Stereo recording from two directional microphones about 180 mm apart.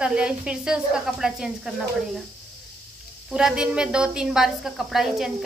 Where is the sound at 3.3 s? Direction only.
5° right (ahead or behind).